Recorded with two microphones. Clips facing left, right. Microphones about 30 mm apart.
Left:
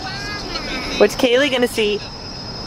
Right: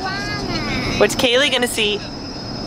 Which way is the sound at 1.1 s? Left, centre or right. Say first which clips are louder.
Even; right.